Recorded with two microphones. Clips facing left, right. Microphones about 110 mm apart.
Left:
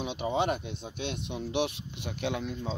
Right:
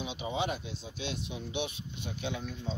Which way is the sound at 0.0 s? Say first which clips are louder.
Left 5 dB; 60° left (ahead or behind).